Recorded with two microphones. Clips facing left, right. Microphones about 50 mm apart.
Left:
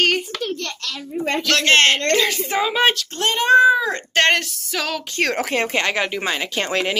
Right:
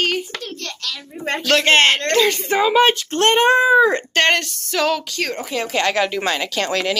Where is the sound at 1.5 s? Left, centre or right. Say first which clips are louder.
Right 2 dB; centre.